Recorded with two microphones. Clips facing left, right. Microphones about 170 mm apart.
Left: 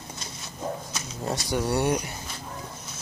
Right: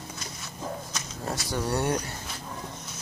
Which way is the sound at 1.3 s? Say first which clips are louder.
Left 3 dB; 10° left (ahead or behind).